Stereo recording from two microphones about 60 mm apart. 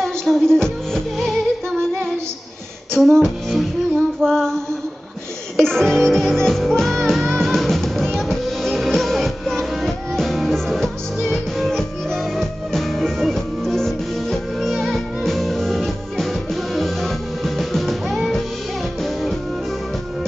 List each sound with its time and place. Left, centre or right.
0.0 s music: centre
4.2 s female singing: centre
5.6 s music: centre